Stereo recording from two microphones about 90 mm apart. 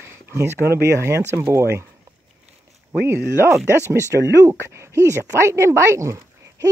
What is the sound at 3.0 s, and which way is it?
Speech, 25° right (ahead or behind).